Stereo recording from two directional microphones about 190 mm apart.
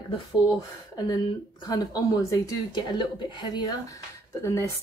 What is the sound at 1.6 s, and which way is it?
Speech, 20° left (ahead or behind).